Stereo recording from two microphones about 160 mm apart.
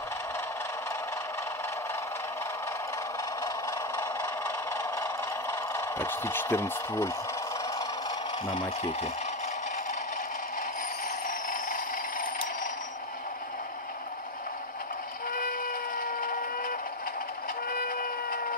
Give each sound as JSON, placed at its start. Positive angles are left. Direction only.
{"t": 4.9, "sound": "a sound", "side_deg": 20}
{"t": 8.5, "sound": "speech", "side_deg": 40}
{"t": 11.2, "sound": "vehicle", "side_deg": 60}
{"t": 16.0, "sound": "vehicle", "side_deg": 60}
{"t": 17.6, "sound": "printer", "side_deg": 65}